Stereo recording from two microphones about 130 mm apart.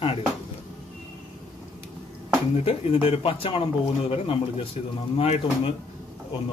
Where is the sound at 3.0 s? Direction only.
45° left (ahead or behind).